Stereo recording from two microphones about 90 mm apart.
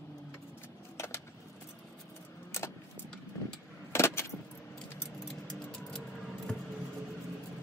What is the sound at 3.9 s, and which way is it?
Keys jangling, 30° left (ahead or behind).